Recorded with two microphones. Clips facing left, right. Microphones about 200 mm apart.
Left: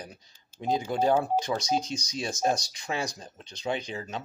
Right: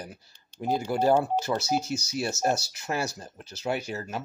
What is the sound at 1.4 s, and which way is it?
Speech, 5° right (ahead or behind).